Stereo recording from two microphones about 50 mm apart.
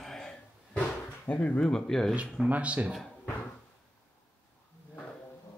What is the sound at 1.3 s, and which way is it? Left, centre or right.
Speech, left.